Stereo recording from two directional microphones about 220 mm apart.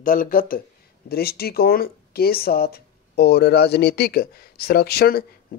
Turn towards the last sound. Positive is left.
turn(degrees=45)  # may be behind; listen again after turning